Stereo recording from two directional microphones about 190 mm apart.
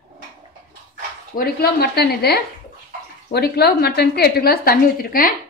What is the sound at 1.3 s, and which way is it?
A woman's voice, 55° left (ahead or behind).